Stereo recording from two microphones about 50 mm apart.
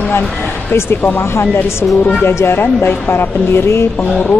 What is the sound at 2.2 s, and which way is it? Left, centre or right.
Speech, left.